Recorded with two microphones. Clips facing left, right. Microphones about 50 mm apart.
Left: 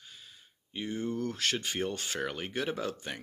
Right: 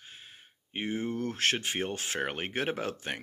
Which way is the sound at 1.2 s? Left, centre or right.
Right.